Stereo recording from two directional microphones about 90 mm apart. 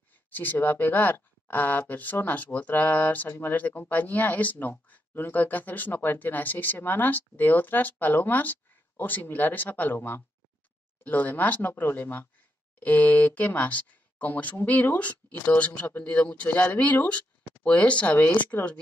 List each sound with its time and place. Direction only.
0.3 s speech: 20° left (ahead or behind)